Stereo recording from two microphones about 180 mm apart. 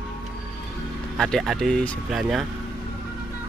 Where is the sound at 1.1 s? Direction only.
Centre (ahead or behind).